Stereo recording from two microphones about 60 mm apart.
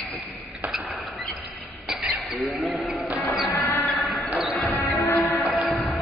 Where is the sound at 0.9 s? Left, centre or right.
Centre.